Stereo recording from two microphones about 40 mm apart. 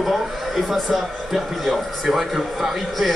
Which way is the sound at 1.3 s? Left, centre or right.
Centre.